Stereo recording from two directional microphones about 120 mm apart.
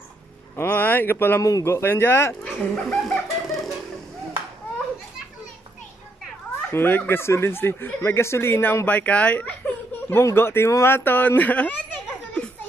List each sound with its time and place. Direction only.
0.6 s speech: 15° left (ahead or behind)
2.4 s music: 5° left (ahead or behind)
6.7 s speech: 15° left (ahead or behind)